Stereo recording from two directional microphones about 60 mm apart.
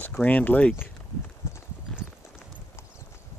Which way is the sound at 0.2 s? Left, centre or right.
Left.